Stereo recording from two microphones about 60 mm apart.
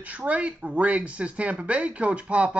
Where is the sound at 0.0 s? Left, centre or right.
Right.